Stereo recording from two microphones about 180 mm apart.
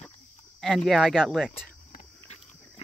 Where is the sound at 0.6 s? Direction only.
Centre (ahead or behind).